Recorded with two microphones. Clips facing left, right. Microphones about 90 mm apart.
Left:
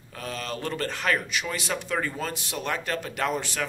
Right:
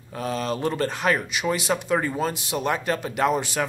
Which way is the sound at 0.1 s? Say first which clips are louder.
Right 7 dB; 20° right (ahead or behind).